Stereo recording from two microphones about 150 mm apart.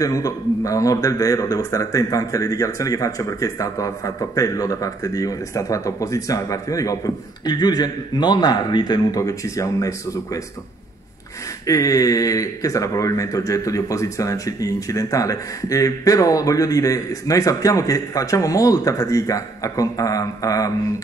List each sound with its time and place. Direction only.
0.0 s speech: 20° left (ahead or behind)
11.6 s speech: 25° left (ahead or behind)